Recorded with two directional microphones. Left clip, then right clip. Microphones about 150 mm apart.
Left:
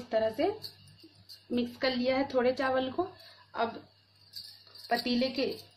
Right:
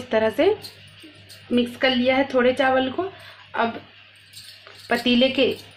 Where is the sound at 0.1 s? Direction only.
30° right (ahead or behind).